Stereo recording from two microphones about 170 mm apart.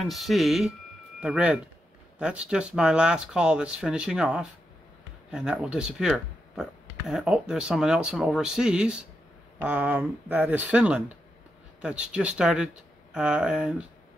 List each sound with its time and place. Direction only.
0.0 s speech: centre (ahead or behind)